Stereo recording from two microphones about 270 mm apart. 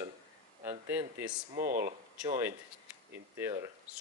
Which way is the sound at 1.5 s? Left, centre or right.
Right.